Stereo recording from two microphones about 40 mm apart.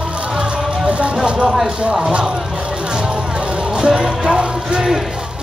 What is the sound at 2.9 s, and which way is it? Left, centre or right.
Vehicle, right.